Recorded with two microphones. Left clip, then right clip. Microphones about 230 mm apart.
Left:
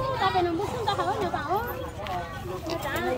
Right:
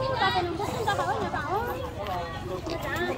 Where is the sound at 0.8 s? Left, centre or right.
Left.